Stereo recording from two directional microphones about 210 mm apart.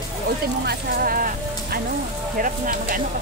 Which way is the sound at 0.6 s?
45° right (ahead or behind).